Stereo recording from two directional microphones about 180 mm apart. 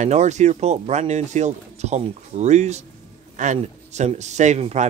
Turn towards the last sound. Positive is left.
turn(degrees=-40)  # may be behind; listen again after turning